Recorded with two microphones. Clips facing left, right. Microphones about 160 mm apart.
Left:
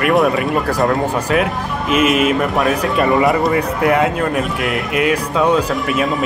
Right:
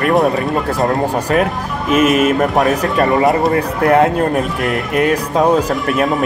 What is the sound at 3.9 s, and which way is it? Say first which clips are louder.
Speech: right 5 dB; 40° right (ahead or behind).